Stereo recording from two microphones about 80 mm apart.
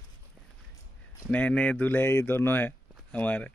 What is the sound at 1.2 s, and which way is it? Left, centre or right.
Speech, centre.